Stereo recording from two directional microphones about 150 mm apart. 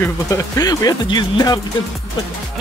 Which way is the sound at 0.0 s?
25° left (ahead or behind).